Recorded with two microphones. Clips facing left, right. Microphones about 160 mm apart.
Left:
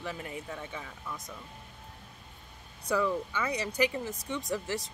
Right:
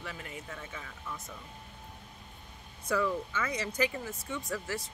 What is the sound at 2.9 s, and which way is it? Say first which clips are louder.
Speech: left 1 dB; 15° left (ahead or behind).